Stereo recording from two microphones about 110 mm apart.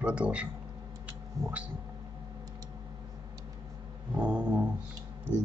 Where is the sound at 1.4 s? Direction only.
35° right (ahead or behind).